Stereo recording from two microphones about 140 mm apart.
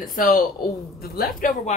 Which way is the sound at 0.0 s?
80° left.